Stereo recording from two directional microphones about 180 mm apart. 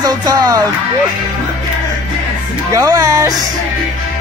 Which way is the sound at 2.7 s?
20° right (ahead or behind).